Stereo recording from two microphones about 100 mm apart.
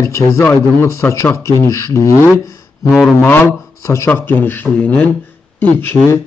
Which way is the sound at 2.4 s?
30° left (ahead or behind).